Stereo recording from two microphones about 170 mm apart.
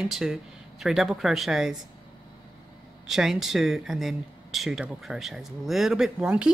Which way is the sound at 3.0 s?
Centre (ahead or behind).